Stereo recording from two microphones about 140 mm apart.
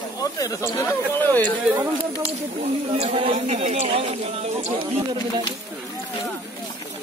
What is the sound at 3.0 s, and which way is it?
Speech, 45° right (ahead or behind).